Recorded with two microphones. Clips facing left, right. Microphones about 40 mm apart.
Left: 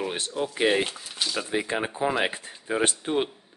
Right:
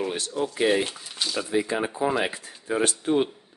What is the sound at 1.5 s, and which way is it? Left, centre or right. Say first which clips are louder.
Speech: right 4 dB; left.